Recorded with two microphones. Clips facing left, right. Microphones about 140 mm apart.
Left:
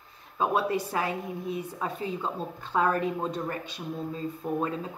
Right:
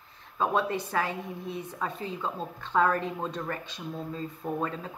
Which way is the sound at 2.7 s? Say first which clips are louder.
Even; 15° left (ahead or behind).